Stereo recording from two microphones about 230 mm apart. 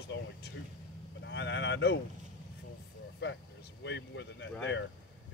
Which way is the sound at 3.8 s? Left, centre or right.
Left.